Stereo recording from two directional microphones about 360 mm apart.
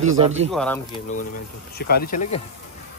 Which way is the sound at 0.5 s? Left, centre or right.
Centre.